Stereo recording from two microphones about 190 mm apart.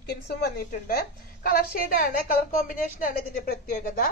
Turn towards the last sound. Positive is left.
turn(degrees=50)  # may be behind; listen again after turning